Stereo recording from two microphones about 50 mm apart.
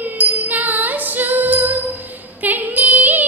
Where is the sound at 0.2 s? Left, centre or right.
Right.